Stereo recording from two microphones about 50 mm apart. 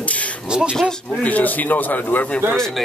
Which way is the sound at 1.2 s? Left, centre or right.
Left.